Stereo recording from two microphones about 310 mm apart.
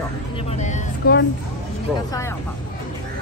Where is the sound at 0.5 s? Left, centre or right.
Left.